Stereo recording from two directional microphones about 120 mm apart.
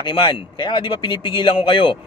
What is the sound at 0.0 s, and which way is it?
A man's voice, 45° left (ahead or behind).